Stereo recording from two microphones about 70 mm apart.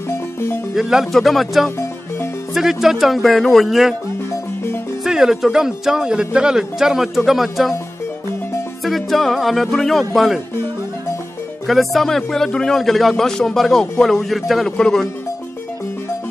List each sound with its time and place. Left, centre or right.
0.7 s speech: centre
5.0 s speech: centre
8.8 s speech: centre
11.6 s speech: centre